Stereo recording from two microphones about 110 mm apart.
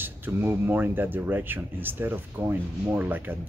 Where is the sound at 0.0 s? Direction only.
20° right (ahead or behind).